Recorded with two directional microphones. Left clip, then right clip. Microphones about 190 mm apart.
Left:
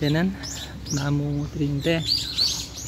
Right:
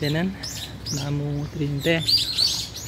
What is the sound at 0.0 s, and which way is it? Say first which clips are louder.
Speech: left 1 dB; 15° left (ahead or behind).